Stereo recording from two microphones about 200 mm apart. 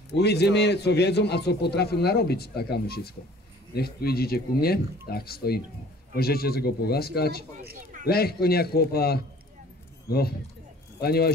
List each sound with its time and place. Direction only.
0.1 s a man's voice: 55° left (ahead or behind)